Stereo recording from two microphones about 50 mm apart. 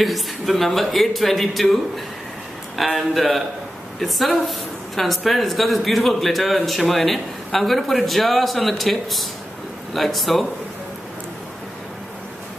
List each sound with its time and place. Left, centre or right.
0.0 s speech: centre